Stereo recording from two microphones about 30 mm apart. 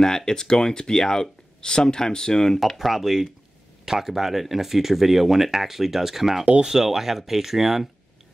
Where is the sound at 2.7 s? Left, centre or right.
Centre.